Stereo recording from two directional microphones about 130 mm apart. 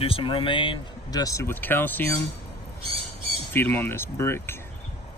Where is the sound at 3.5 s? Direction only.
15° left (ahead or behind).